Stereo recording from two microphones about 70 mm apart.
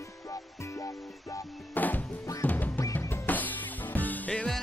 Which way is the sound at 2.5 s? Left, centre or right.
Left.